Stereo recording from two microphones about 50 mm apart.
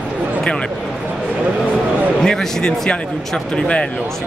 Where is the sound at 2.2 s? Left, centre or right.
Centre.